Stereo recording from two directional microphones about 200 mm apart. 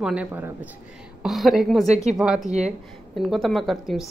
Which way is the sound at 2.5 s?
35° right (ahead or behind).